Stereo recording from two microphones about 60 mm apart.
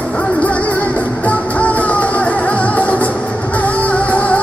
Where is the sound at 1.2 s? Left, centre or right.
Left.